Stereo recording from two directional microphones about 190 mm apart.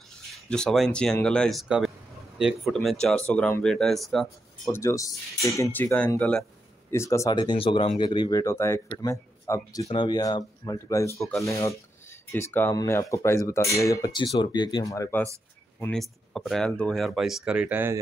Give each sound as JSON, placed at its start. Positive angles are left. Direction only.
{"t": 0.3, "sound": "speech", "side_deg": 5}
{"t": 4.6, "sound": "speech", "side_deg": 15}
{"t": 11.1, "sound": "speech", "side_deg": 0}
{"t": 12.1, "sound": "speech", "side_deg": 15}
{"t": 15.8, "sound": "speech", "side_deg": 5}